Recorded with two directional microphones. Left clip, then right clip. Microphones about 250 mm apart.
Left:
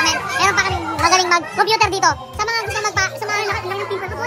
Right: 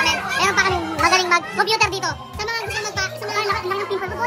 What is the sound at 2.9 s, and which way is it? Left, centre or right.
Music, centre.